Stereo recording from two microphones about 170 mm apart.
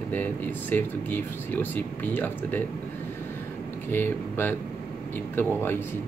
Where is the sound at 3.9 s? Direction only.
10° left (ahead or behind).